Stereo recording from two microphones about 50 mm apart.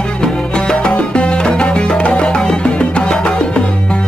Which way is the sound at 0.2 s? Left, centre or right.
Centre.